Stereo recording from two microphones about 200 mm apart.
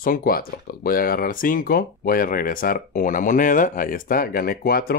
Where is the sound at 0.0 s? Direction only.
45° left (ahead or behind).